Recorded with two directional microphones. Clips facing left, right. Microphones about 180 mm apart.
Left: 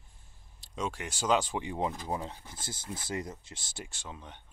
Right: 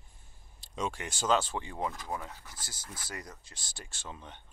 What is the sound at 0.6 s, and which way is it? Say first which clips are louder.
Speech: even; 5° left (ahead or behind).